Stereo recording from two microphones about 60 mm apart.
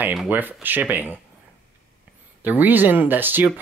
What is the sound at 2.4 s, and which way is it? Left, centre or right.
Speech, right.